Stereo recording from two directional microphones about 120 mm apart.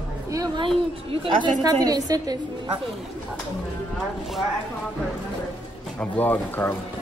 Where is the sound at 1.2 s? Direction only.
45° right (ahead or behind).